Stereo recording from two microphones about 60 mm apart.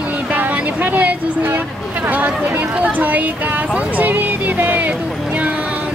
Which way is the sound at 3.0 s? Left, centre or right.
Right.